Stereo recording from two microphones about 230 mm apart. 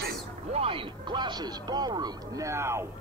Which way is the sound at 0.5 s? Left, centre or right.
Right.